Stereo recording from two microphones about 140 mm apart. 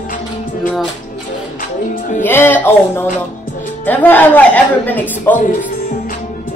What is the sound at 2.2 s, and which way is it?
A woman's voice, 15° left (ahead or behind).